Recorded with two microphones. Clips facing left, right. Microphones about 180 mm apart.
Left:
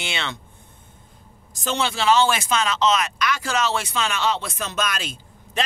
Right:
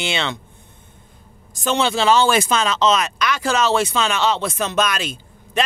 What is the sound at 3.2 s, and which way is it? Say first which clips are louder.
Speech: right 4 dB; 90° right.